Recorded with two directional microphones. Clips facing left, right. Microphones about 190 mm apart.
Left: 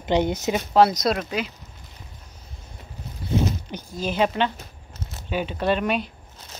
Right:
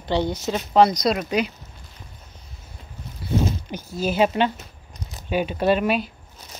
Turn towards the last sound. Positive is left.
turn(degrees=-5)  # may be behind; listen again after turning